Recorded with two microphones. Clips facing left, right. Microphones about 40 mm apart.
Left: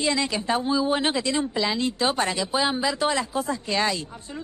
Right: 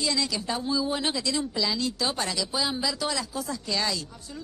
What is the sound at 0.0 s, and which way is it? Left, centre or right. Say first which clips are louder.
Speech: left 4 dB; left.